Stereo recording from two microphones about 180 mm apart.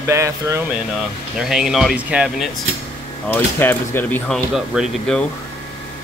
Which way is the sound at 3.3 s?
10° left (ahead or behind).